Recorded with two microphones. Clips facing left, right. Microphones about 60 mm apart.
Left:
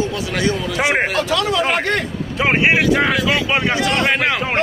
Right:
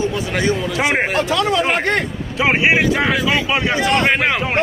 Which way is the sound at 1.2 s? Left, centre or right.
Right.